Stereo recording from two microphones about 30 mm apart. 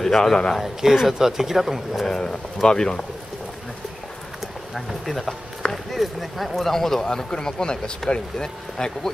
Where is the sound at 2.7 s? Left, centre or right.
Left.